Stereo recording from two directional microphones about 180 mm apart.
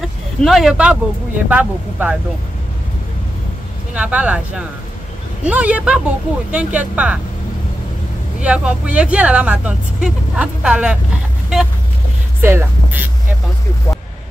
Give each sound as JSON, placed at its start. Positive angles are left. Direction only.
{"t": 0.0, "sound": "speech", "side_deg": 0}
{"t": 3.9, "sound": "speech", "side_deg": -5}
{"t": 8.4, "sound": "speech", "side_deg": -5}
{"t": 12.4, "sound": "music", "side_deg": -10}